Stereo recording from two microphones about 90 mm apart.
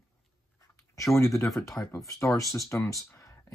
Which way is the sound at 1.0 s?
35° left (ahead or behind).